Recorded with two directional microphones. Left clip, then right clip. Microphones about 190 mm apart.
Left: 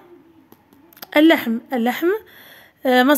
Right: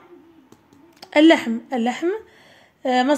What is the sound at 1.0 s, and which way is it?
A woman's voice, 20° left (ahead or behind).